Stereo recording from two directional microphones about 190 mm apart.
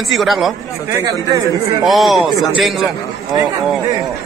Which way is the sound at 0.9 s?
15° right (ahead or behind).